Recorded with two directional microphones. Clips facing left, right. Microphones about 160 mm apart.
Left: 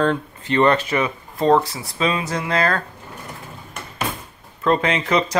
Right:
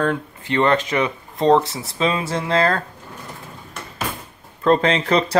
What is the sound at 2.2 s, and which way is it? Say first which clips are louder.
Speech: right 2 dB; 25° right (ahead or behind).